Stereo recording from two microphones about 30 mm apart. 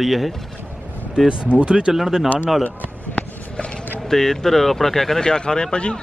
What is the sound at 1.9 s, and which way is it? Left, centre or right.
Speech, centre.